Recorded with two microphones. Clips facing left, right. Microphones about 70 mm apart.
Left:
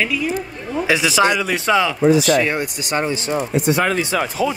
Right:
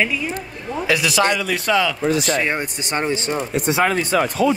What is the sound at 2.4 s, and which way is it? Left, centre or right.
Speech, right.